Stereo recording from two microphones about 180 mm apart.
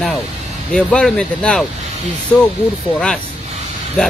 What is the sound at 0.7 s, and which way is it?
Speech, 5° left (ahead or behind).